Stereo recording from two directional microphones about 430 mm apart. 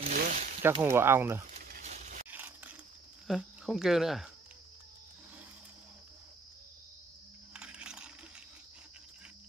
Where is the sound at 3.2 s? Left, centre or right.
Centre.